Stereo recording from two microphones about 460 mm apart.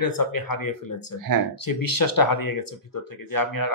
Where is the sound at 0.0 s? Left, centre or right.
Left.